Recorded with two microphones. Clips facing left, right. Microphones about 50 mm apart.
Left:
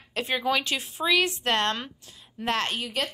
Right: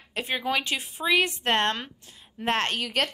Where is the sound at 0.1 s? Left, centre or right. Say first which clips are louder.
Left 1 dB; centre.